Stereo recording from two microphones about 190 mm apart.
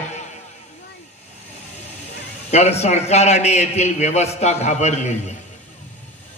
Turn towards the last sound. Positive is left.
turn(degrees=35)  # may be behind; listen again after turning